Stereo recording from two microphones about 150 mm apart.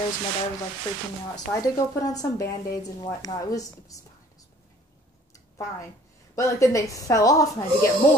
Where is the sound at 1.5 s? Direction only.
25° left (ahead or behind).